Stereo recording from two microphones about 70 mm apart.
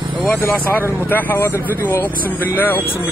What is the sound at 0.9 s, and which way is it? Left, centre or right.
Speech, left.